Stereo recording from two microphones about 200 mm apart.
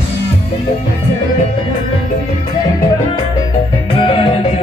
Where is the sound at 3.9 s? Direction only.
25° left (ahead or behind).